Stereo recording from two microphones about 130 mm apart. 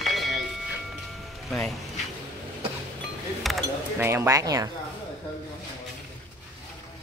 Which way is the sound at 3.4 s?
Centre (ahead or behind).